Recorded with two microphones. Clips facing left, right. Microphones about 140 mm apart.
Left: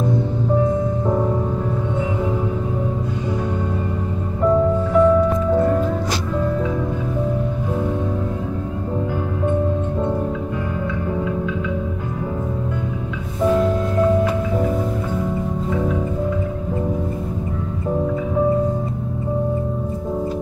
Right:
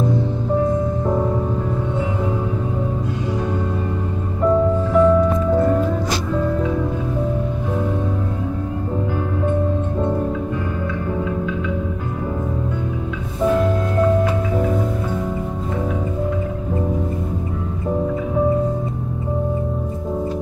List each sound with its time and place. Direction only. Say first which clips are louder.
1.0 s music: even; centre (ahead or behind)
4.4 s music: even; centre (ahead or behind)